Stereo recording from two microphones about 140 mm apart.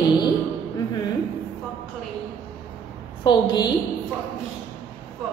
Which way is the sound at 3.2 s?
30° left (ahead or behind).